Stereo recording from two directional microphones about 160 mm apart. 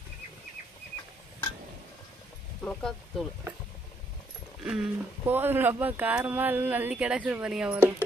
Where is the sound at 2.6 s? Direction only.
5° left (ahead or behind).